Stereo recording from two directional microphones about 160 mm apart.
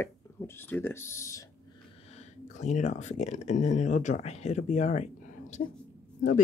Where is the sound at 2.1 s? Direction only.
45° left (ahead or behind).